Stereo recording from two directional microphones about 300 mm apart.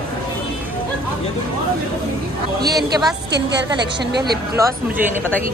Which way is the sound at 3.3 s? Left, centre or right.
Right.